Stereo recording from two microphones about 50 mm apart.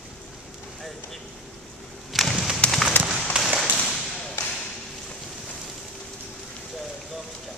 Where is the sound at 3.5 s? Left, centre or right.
Right.